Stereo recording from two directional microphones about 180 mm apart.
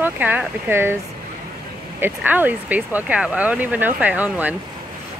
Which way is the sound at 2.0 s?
10° right (ahead or behind).